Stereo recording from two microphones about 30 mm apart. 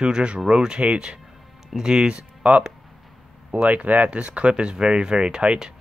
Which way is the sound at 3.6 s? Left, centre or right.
Right.